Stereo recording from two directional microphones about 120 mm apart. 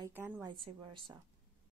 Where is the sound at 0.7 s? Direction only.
45° right (ahead or behind).